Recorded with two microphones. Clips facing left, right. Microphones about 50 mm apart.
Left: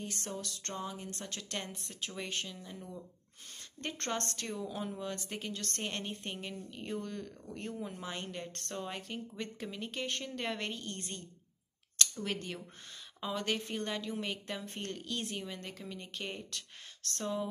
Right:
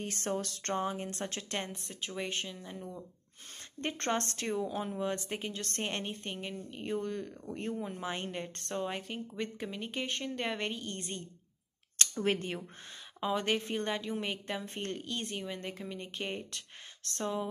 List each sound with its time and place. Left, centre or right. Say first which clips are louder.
0.0 s speech: right 6 dB; right
1.7 s a woman's voice: right 2 dB; centre
12.0 s a sound: right 5 dB; right
12.4 s a woman's voice: right 4 dB; right